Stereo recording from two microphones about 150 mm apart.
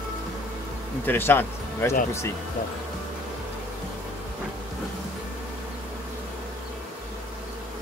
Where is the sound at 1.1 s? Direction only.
15° left (ahead or behind).